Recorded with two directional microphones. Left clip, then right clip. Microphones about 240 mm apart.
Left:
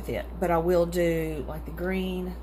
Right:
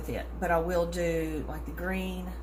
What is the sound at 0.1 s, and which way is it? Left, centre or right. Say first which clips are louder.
Speech: left 3 dB; left.